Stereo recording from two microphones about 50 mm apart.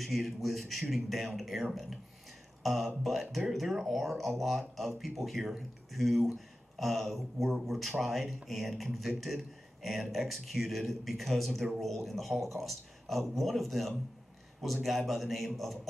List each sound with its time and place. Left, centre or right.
0.0 s a man's voice: centre